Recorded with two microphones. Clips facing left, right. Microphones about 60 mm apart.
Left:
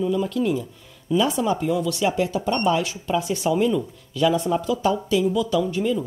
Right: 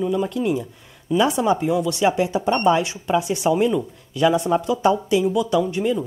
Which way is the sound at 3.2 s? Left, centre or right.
Centre.